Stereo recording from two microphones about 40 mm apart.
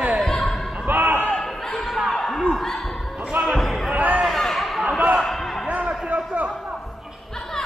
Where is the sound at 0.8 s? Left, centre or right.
Right.